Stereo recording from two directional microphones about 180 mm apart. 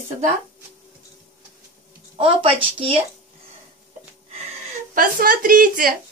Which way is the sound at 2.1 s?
30° right (ahead or behind).